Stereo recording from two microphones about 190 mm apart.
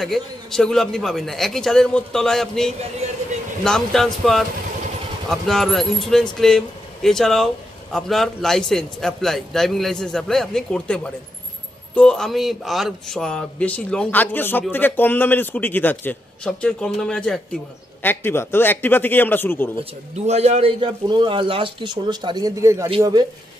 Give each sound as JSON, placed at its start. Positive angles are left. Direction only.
{"t": 0.0, "sound": "a man's voice", "side_deg": 0}
{"t": 19.8, "sound": "speech", "side_deg": -35}